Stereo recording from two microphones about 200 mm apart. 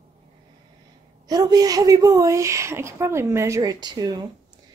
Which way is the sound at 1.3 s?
20° right (ahead or behind).